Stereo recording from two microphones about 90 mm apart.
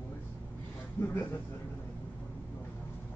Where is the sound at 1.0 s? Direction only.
25° left (ahead or behind).